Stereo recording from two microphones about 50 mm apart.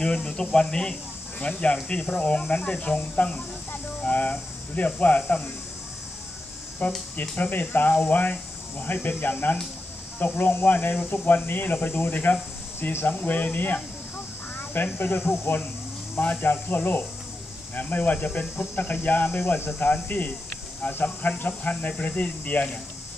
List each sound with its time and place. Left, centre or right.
0.0 s speech: centre; by 5.5 s left
6.8 s speech: left
14.6 s a sound: left
15.0 s speech: left
16.2 s speech: left